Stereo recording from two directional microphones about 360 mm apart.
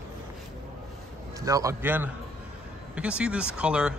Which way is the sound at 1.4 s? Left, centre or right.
Centre.